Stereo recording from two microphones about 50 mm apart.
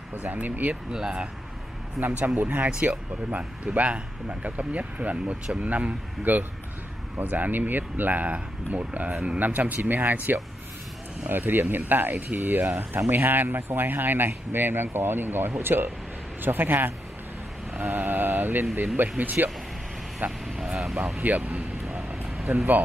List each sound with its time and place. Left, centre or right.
0.1 s speech: right
0.9 s speech: centre
2.4 s speech: right
20.6 s speech: centre
21.2 s speech: right
21.8 s vehicle: centre
22.4 s speech: centre